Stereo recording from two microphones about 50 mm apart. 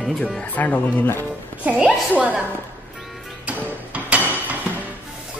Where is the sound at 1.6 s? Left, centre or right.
Right.